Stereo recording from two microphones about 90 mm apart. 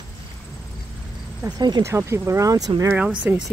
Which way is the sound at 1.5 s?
50° right (ahead or behind).